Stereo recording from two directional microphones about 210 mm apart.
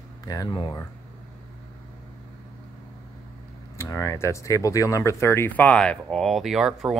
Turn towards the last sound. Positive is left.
turn(degrees=0)  # may be behind; listen again after turning